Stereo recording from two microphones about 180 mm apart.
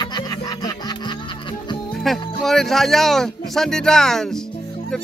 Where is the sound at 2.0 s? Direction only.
Centre (ahead or behind).